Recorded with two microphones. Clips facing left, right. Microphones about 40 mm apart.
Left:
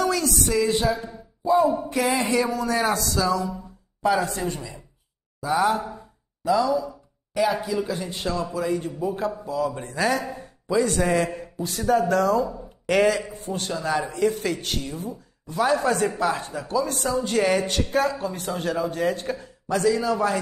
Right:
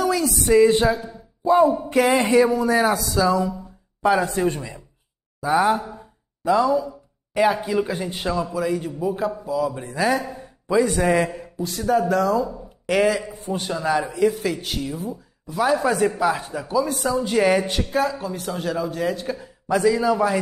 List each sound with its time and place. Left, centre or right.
0.0 s music: centre
0.5 s speech: right
1.4 s music: right
1.9 s a man's voice: right
2.3 s speech: centre
3.3 s speech: centre
4.0 s speech: right
5.4 s speech: right
6.4 s a man's voice: right
8.1 s speech: centre
19.4 s a man's voice: centre